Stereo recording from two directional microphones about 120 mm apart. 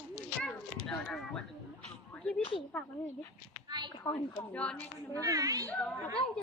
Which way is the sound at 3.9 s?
35° left (ahead or behind).